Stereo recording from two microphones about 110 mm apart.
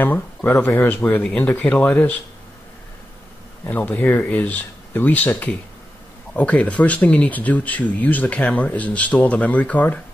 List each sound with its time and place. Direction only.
0.0 s speech: 20° left (ahead or behind)
3.6 s speech: 15° left (ahead or behind)